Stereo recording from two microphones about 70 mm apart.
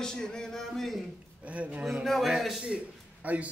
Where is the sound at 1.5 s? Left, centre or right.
Centre.